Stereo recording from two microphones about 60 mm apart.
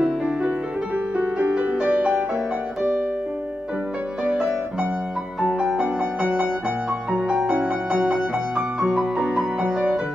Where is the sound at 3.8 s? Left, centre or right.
Right.